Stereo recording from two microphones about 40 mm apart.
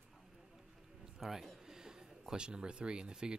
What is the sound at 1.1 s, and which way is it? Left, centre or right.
A man's voice, centre.